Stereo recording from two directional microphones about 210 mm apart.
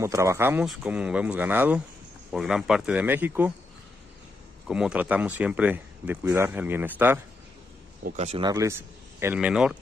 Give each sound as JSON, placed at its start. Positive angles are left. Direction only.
{"t": 0.0, "sound": "speech", "side_deg": -15}
{"t": 4.6, "sound": "speech", "side_deg": -5}
{"t": 8.0, "sound": "speech", "side_deg": -30}
{"t": 8.5, "sound": "a man's voice", "side_deg": -15}